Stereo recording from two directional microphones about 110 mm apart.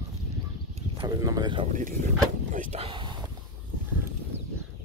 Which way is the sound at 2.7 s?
80° right.